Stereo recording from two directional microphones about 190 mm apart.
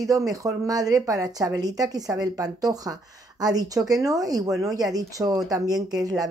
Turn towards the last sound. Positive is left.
turn(degrees=-20)  # may be behind; listen again after turning